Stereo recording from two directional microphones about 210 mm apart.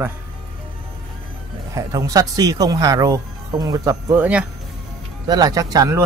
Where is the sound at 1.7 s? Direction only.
15° right (ahead or behind).